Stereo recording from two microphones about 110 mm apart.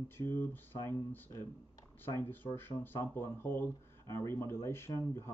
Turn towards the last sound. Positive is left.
turn(degrees=30)  # may be behind; listen again after turning